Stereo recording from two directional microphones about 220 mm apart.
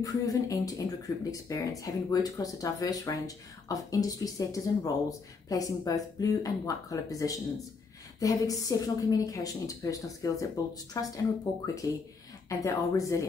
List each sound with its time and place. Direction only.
0.0 s speech: 15° left (ahead or behind)